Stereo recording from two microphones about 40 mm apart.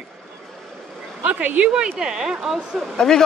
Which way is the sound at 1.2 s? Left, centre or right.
Right.